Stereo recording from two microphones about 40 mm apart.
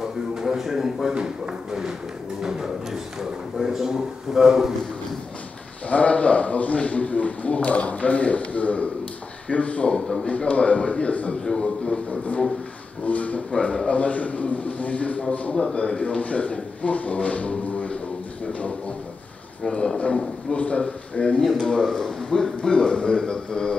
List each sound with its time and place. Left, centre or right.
0.0 s a sound: centre
1.1 s speech: centre
5.9 s a man's voice: left
11.4 s a man's voice: left
12.1 s a man's voice: left
20.0 s a man's voice: left